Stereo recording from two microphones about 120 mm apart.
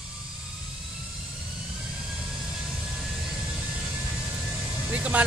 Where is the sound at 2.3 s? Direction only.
5° right (ahead or behind).